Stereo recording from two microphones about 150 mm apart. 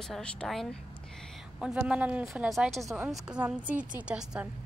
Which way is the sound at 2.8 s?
20° right (ahead or behind).